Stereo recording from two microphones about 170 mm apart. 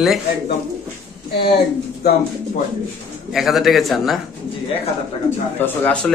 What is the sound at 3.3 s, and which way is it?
Speech, centre (ahead or behind).